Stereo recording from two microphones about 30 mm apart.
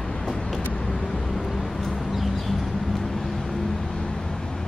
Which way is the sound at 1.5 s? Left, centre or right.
Centre.